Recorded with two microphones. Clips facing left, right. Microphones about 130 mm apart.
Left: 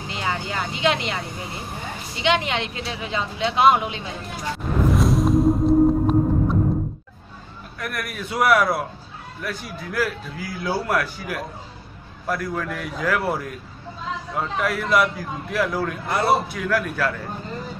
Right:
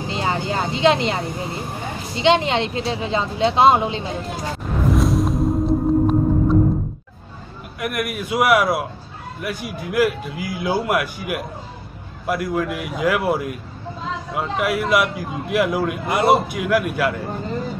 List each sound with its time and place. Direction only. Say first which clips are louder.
0.1 s a woman's voice: right 4 dB; 30° right (ahead or behind)
4.8 s music: right 1 dB; centre (ahead or behind)
7.8 s a man's voice: right 6 dB; 15° right (ahead or behind)